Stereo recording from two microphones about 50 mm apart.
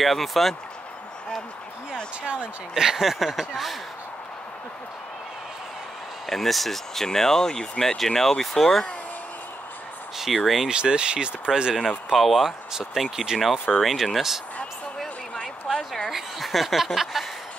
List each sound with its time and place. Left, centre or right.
0.0 s speech: centre
2.2 s speech: right; by 3.7 s centre
6.2 s speech: centre
10.1 s speech: centre
10.7 s speech: centre
12.1 s speech: centre
15.3 s a sound: centre
16.1 s speech: centre